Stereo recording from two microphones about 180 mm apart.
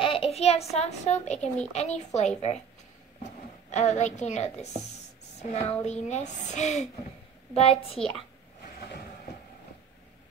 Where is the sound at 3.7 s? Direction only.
40° left (ahead or behind).